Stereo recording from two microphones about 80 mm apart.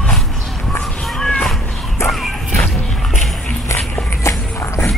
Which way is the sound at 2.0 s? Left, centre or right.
Left.